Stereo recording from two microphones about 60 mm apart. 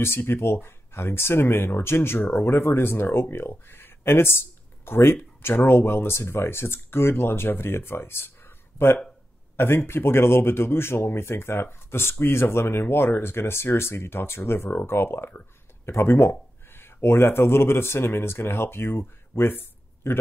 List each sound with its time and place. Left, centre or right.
0.0 s speech: left